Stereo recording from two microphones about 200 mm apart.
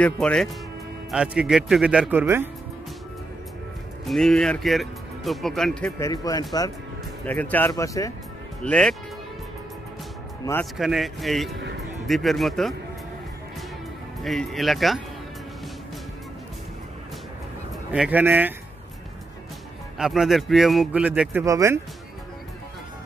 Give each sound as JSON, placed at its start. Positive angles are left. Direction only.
{"t": 0.0, "sound": "speech", "side_deg": 5}
{"t": 4.0, "sound": "speech", "side_deg": 0}
{"t": 5.9, "sound": "speech", "side_deg": 15}
{"t": 8.6, "sound": "speech", "side_deg": 5}
{"t": 10.6, "sound": "speech", "side_deg": 0}
{"t": 14.2, "sound": "speech", "side_deg": 0}
{"t": 17.9, "sound": "speech", "side_deg": -5}
{"t": 20.0, "sound": "speech", "side_deg": 0}